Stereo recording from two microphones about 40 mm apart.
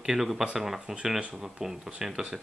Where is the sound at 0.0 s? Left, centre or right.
Centre.